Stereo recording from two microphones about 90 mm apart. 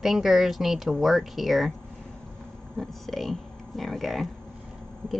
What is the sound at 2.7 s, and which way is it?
Speech, centre (ahead or behind).